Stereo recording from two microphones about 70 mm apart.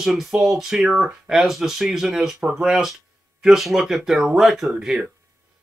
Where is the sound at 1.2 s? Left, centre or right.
Centre.